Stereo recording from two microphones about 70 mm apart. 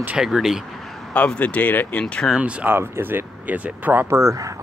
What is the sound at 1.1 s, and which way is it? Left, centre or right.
Speech, centre.